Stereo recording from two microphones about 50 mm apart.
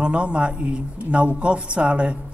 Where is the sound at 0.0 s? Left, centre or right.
Right.